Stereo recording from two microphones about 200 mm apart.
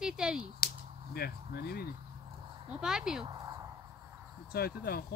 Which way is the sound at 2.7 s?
5° right (ahead or behind).